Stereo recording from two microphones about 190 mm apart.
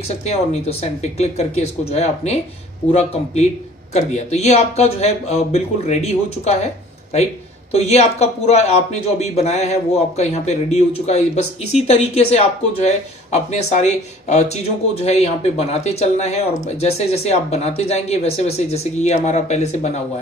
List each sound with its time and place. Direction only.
0.1 s speech: 35° left (ahead or behind)